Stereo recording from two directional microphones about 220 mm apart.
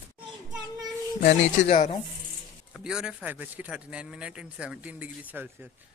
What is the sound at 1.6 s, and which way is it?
Speech, 30° left (ahead or behind).